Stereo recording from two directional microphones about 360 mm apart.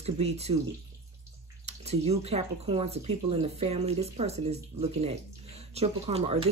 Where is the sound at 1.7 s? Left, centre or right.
Centre.